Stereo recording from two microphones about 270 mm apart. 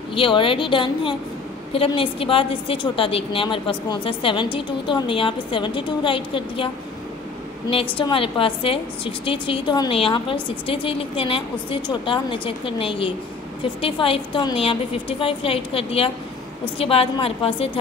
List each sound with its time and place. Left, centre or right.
0.1 s a woman's voice: centre
7.7 s a woman's voice: centre